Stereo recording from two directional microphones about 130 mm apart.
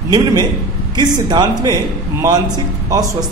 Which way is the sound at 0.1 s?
30° right (ahead or behind).